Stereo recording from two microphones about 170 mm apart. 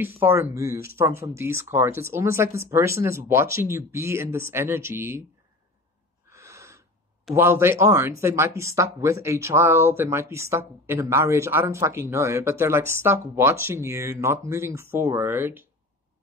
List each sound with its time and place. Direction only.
0.0 s speech: 15° right (ahead or behind)
6.3 s gasp: 15° right (ahead or behind)
7.3 s speech: 15° right (ahead or behind)